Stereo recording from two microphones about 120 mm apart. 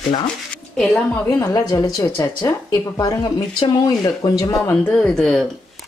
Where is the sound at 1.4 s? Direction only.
30° left (ahead or behind).